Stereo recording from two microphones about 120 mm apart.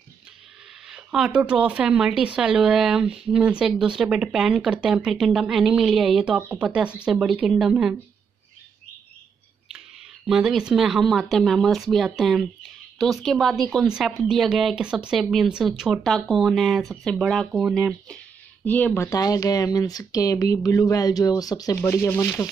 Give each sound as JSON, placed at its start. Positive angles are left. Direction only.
{"t": 0.8, "sound": "speech", "side_deg": -5}
{"t": 10.2, "sound": "speech", "side_deg": -5}
{"t": 18.0, "sound": "a sound", "side_deg": 10}
{"t": 19.0, "sound": "speech", "side_deg": 30}